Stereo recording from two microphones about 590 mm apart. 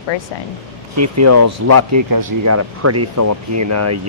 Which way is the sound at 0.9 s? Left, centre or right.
Right.